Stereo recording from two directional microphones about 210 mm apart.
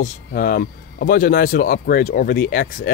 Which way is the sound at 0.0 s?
45° left (ahead or behind).